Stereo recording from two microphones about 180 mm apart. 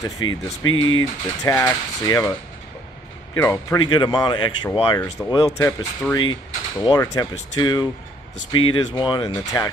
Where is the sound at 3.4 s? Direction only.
20° left (ahead or behind).